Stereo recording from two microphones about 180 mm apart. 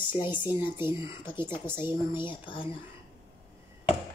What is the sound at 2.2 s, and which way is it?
Speech, 30° left (ahead or behind).